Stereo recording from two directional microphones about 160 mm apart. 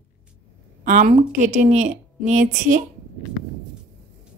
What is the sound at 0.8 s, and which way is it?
A woman's voice, 50° right (ahead or behind).